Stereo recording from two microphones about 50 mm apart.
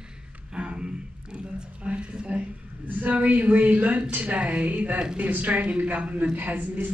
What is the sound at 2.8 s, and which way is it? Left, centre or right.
A woman's voice, right.